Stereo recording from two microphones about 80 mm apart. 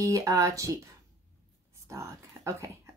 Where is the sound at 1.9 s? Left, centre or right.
Right.